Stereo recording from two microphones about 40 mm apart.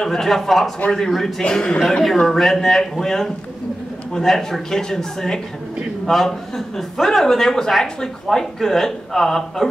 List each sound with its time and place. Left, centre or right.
0.0 s speech: centre
1.5 s a man's voice: left